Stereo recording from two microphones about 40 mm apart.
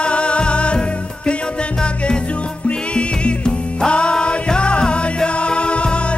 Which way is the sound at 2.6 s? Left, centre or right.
Left.